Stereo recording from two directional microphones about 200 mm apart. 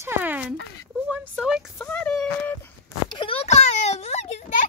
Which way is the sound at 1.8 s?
5° left (ahead or behind).